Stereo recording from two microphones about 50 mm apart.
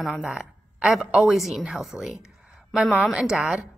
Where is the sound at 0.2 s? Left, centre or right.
Centre.